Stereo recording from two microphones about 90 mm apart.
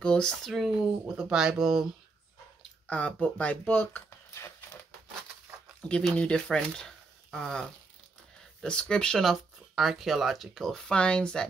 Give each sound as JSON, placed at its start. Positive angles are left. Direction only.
{"t": 0.0, "sound": "speech", "side_deg": 10}
{"t": 0.5, "sound": "speech", "side_deg": -5}
{"t": 2.9, "sound": "speech", "side_deg": 15}
{"t": 4.3, "sound": "a sound", "side_deg": 30}
{"t": 5.8, "sound": "a sound", "side_deg": 10}
{"t": 6.1, "sound": "speech", "side_deg": 10}